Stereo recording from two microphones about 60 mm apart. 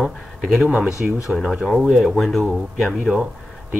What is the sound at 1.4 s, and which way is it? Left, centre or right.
Speech, centre.